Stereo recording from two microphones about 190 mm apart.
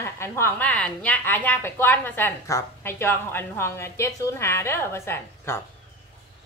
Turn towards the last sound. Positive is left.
turn(degrees=15)  # may be behind; listen again after turning